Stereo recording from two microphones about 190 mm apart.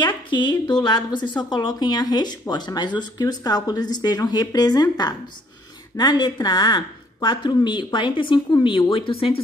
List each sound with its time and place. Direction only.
0.0 s a woman's voice: 25° left (ahead or behind)